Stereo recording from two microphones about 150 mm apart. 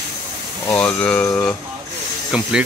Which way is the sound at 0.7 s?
5° left (ahead or behind).